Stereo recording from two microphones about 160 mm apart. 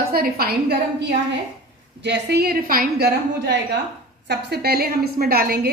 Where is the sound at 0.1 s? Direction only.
70° right (ahead or behind).